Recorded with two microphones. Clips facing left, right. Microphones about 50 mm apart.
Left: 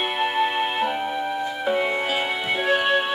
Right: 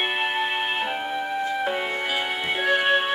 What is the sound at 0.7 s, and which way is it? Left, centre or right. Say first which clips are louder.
Music: left 2 dB; right.